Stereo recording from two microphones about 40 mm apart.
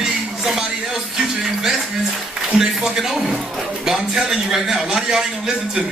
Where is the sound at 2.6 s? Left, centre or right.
Centre.